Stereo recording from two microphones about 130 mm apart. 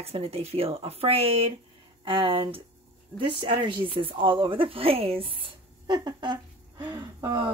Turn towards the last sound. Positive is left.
turn(degrees=-35)  # may be behind; listen again after turning